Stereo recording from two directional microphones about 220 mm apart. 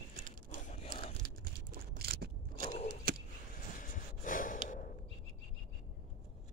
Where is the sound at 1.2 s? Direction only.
45° right (ahead or behind).